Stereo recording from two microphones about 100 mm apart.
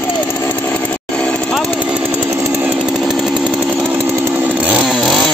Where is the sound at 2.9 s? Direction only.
5° right (ahead or behind).